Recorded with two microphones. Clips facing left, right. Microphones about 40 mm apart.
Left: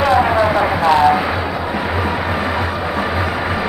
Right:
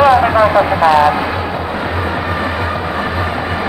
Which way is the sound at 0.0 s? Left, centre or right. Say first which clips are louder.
Right 4 dB; centre.